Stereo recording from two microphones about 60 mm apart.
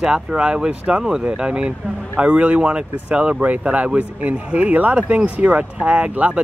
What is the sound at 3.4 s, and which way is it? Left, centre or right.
Speech, right.